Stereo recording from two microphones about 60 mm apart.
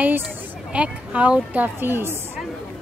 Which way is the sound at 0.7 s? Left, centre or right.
Right.